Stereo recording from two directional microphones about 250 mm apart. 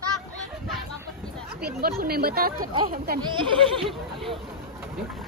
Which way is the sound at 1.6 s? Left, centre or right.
Right.